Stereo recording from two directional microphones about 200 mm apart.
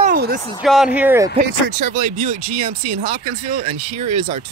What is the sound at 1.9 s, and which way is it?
Speech, 45° right (ahead or behind).